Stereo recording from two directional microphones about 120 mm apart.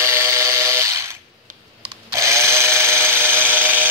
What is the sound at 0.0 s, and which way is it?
Fire alarm, 25° right (ahead or behind).